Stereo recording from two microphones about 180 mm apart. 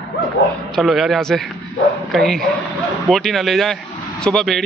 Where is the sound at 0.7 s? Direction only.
Centre (ahead or behind).